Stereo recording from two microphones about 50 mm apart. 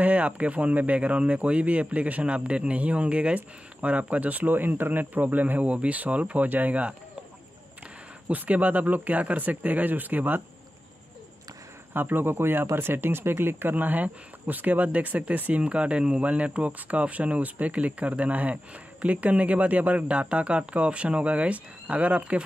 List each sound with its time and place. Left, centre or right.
0.0 s speech: right
8.3 s speech: right
11.9 s a man's voice: right